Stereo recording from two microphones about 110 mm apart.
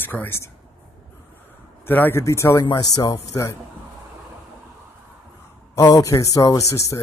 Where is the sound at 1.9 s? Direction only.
20° left (ahead or behind).